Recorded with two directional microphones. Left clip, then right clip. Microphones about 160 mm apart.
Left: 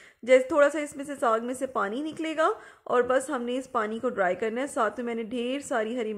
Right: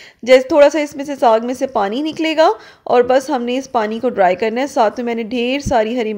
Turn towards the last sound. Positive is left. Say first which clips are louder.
# right 13 dB
turn(degrees=-35)  # may be behind; listen again after turning